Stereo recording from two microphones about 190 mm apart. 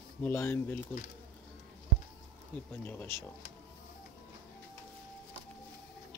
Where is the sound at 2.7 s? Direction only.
10° left (ahead or behind).